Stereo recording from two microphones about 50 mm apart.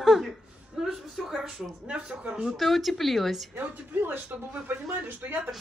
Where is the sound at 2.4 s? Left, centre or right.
Centre.